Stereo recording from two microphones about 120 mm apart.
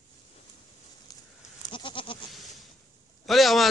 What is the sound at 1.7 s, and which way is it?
Goat, 45° left (ahead or behind).